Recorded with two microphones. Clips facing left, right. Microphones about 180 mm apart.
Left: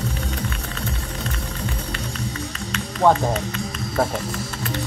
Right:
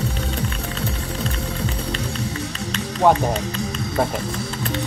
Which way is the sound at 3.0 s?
5° right (ahead or behind).